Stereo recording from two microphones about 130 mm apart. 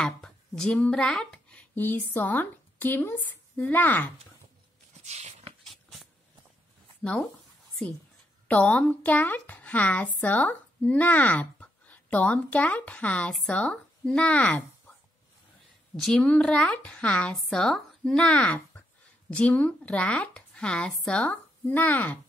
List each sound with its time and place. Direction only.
0.0 s speech: 5° left (ahead or behind)
5.0 s a sound: 60° right (ahead or behind)
5.7 s dog: centre (ahead or behind)
7.0 s speech: 5° left (ahead or behind)
8.5 s speech: 10° left (ahead or behind)
16.0 s a woman's voice: 10° left (ahead or behind)